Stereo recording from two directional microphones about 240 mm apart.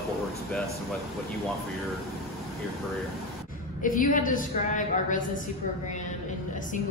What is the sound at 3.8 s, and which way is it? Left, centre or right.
A woman's voice, left.